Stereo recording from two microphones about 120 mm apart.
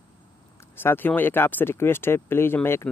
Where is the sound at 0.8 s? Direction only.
15° left (ahead or behind).